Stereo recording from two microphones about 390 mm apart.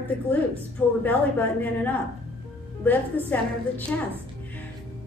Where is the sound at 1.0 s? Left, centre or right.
Centre.